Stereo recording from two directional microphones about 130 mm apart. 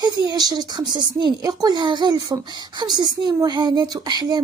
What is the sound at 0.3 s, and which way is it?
Speech, 30° right (ahead or behind).